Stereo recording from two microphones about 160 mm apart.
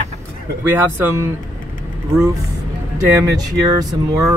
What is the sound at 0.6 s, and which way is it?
Speech, 15° right (ahead or behind).